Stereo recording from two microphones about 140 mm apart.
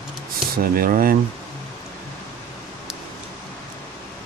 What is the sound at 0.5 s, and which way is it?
Speech, 90° right.